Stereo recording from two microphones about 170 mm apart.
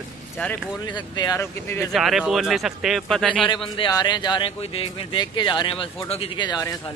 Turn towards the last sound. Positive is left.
turn(degrees=20)  # may be behind; listen again after turning